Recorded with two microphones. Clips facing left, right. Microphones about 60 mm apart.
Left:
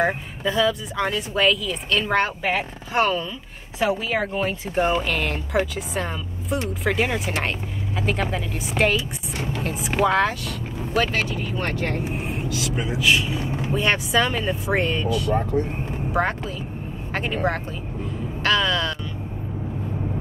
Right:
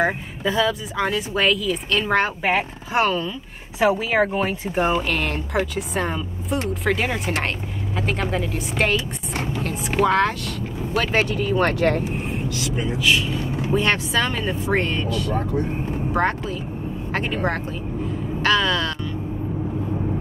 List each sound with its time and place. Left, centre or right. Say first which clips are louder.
0.0 s speech: right 1 dB; centre
2.4 s speech: right 3 dB; centre
3.0 s speech: right 1 dB; centre
3.8 s speech: right 4 dB; right
4.7 s speech: even; centre
11.2 s speech: right 7 dB; right
12.1 s speech: right 1 dB; centre